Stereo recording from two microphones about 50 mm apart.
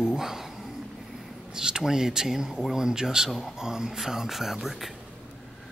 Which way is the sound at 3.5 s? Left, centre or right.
Centre.